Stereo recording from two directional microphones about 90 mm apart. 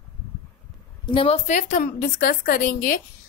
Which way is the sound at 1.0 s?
75° left (ahead or behind).